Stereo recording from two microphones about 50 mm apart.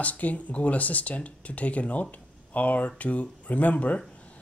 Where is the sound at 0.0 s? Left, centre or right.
Left.